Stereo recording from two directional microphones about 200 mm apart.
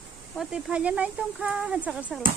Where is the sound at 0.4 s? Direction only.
5° right (ahead or behind).